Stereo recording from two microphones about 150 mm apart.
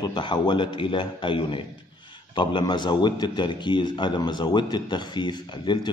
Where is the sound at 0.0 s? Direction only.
30° left (ahead or behind).